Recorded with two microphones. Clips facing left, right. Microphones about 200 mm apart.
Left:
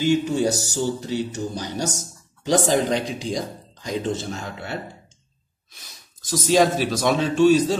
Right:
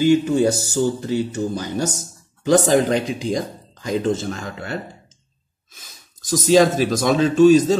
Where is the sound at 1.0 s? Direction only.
50° right (ahead or behind).